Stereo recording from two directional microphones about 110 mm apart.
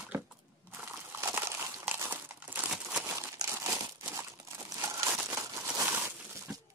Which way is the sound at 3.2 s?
25° right (ahead or behind).